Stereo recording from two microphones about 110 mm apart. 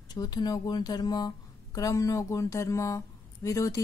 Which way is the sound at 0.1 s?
40° left (ahead or behind).